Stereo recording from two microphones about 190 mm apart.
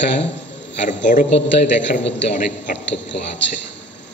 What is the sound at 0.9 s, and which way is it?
Speech, 40° left (ahead or behind).